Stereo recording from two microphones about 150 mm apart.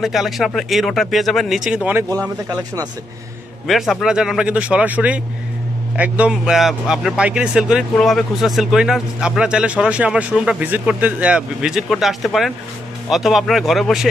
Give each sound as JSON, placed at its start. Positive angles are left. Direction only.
{"t": 0.0, "sound": "a man's voice", "side_deg": 0}
{"t": 2.0, "sound": "speech", "side_deg": -25}
{"t": 3.6, "sound": "a man's voice", "side_deg": 0}